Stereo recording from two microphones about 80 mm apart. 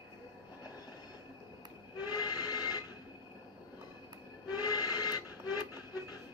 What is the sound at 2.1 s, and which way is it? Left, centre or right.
Steam whistle, left.